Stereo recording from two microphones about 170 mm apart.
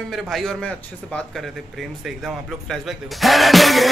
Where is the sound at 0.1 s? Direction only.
Centre (ahead or behind).